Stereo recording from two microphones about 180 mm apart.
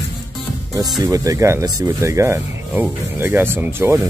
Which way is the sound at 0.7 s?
20° right (ahead or behind).